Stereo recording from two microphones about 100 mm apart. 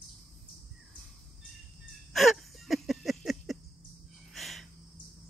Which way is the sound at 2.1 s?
Centre (ahead or behind).